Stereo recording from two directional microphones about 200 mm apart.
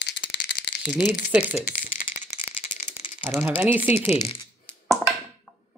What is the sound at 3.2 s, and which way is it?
Speech, 10° right (ahead or behind).